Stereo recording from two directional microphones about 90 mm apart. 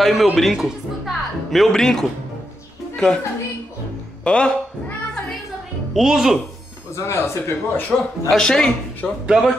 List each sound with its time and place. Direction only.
0.0 s a man's voice: centre (ahead or behind)
4.2 s cat: 10° left (ahead or behind)
5.9 s speech: 5° right (ahead or behind)
6.9 s a man's voice: 30° left (ahead or behind)
8.3 s speech: 5° left (ahead or behind)
9.2 s speech: 5° right (ahead or behind)